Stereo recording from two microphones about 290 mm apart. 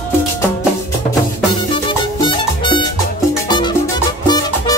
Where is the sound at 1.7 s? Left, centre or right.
Centre.